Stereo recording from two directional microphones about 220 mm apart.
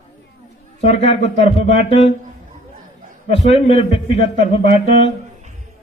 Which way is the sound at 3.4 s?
30° left (ahead or behind).